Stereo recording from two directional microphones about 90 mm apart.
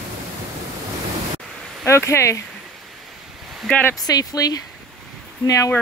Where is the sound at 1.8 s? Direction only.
30° left (ahead or behind).